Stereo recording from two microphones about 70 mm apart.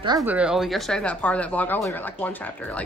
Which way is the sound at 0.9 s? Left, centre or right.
Centre.